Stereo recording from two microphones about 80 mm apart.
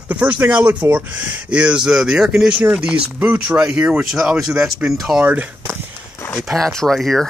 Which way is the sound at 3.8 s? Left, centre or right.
Right.